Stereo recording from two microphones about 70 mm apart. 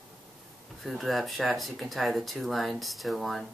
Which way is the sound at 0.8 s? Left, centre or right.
Centre.